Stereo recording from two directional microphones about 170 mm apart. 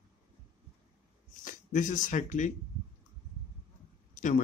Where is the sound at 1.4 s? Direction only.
50° left (ahead or behind).